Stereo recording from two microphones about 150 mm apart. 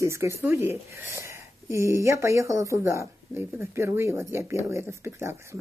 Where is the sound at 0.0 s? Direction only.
20° right (ahead or behind).